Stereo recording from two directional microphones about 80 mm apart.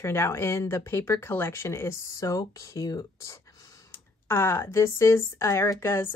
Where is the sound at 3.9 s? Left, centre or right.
Left.